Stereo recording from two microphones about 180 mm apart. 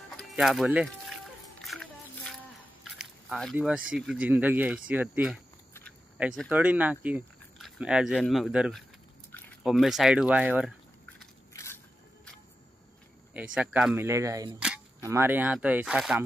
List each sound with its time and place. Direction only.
0.2 s music: centre (ahead or behind)
2.8 s a sound: centre (ahead or behind)
3.5 s speech: 5° right (ahead or behind)
11.5 s crushing: 15° left (ahead or behind)
13.6 s speech: 5° right (ahead or behind)
14.6 s camera: 5° right (ahead or behind)
15.0 s speech: 15° right (ahead or behind)